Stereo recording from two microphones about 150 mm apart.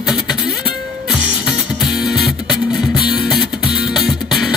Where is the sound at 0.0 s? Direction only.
5° right (ahead or behind).